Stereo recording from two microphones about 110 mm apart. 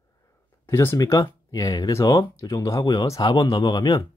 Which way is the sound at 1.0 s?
35° left (ahead or behind).